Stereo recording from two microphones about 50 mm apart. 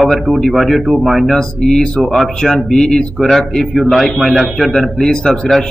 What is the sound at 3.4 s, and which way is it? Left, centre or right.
Speech, centre.